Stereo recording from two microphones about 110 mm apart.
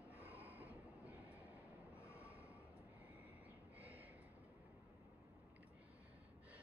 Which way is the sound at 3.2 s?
15° right (ahead or behind).